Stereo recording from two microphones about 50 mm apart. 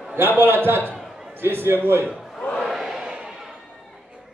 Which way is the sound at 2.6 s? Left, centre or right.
Centre.